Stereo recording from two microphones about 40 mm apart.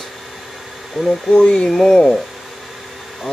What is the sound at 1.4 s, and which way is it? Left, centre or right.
Speech, centre.